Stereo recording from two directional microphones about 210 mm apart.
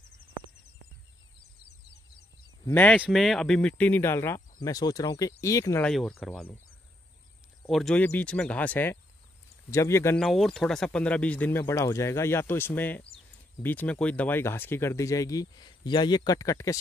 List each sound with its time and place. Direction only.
2.6 s speech: 10° left (ahead or behind)
5.9 s speech: centre (ahead or behind)
7.6 s speech: centre (ahead or behind)
10.2 s speech: centre (ahead or behind)